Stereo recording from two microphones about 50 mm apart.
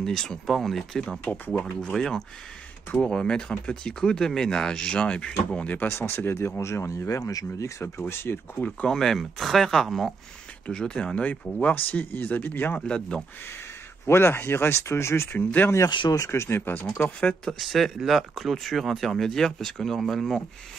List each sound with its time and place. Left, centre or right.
0.0 s speech: centre
1.2 s speech: left
1.6 s speech: centre
5.9 s speech: left
8.0 s speech: left
8.8 s speech: centre
9.8 s speech: centre
10.7 s speech: centre
11.6 s speech: left
12.8 s speech: centre
14.0 s speech: left
15.3 s speech: left
15.7 s speech: left
17.5 s speech: centre